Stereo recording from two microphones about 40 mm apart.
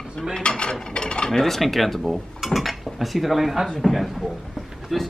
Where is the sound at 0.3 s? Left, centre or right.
Left.